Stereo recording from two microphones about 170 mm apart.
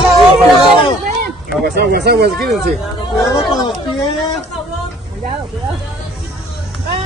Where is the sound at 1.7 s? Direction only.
70° right (ahead or behind).